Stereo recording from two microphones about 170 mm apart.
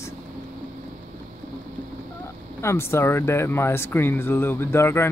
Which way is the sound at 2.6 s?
15° left (ahead or behind).